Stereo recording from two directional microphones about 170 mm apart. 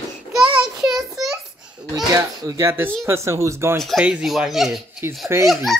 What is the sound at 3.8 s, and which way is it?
Speech, 5° right (ahead or behind).